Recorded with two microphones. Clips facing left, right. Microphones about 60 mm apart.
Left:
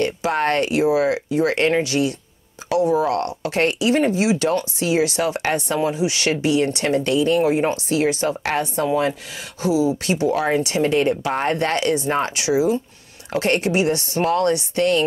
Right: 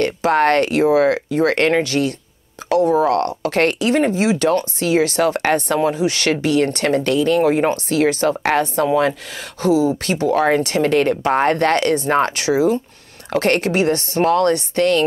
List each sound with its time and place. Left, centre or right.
0.0 s speech: right